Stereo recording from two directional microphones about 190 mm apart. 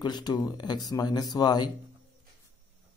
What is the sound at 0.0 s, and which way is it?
Speech, 25° left (ahead or behind).